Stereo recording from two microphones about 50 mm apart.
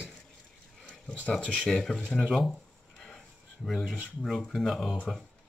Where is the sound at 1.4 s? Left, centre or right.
Centre.